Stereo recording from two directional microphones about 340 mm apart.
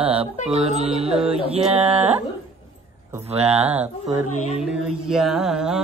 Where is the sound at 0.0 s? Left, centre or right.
Centre.